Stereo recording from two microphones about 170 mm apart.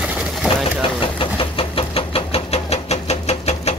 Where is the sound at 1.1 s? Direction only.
30° left (ahead or behind).